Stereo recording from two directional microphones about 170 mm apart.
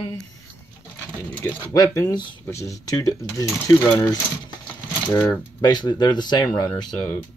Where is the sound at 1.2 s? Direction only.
10° left (ahead or behind).